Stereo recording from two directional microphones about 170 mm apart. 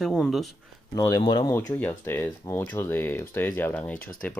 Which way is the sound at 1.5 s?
15° left (ahead or behind).